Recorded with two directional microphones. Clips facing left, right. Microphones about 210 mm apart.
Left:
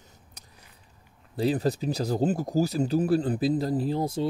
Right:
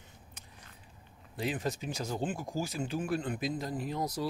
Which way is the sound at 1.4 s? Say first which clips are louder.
Left 9 dB; 35° left (ahead or behind).